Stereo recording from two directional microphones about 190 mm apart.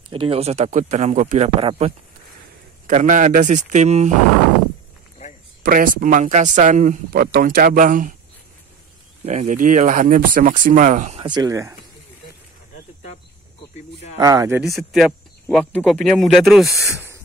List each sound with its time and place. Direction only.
0.1 s speech: 30° right (ahead or behind)
5.2 s a sound: 35° left (ahead or behind)
5.6 s speech: 50° right (ahead or behind)
9.2 s speech: 35° right (ahead or behind)
11.2 s speech: 20° right (ahead or behind)
14.1 s speech: 20° right (ahead or behind)
14.8 s speech: centre (ahead or behind)